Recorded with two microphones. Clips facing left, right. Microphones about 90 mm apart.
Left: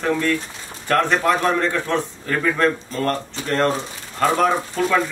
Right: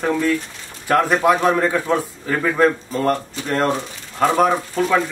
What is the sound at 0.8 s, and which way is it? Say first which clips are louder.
A man's voice: right 2 dB; 10° right (ahead or behind).